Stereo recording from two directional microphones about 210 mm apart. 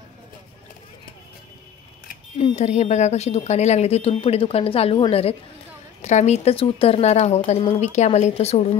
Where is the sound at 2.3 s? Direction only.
30° left (ahead or behind).